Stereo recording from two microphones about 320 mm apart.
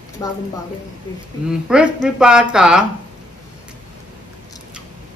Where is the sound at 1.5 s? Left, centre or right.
Centre.